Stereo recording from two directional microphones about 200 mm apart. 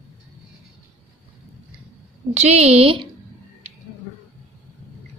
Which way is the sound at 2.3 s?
30° right (ahead or behind).